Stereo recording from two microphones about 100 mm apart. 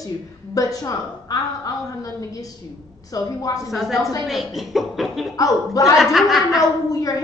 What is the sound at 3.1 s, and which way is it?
Speech, 35° left (ahead or behind).